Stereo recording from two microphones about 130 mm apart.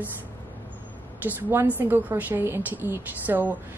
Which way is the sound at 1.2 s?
15° right (ahead or behind).